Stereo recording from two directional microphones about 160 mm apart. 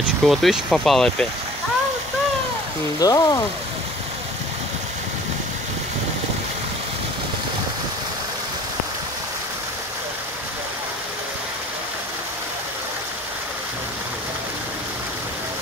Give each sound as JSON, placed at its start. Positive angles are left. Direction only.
{"t": 0.2, "sound": "speech", "side_deg": 0}
{"t": 3.0, "sound": "speech", "side_deg": 20}